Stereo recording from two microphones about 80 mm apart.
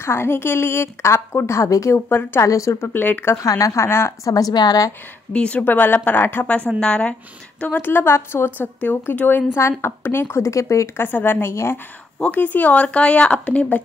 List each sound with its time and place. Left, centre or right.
0.0 s a woman's voice: left
2.0 s speech: left
2.4 s a woman's voice: left
2.9 s speech: left
3.3 s a woman's voice: left
4.3 s a woman's voice: left
5.3 s speech: centre
6.8 s speech: centre
7.6 s speech: left
11.1 s speech: left
12.2 s speech: left